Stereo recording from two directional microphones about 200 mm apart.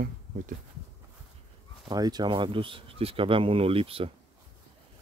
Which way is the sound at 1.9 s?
20° right (ahead or behind).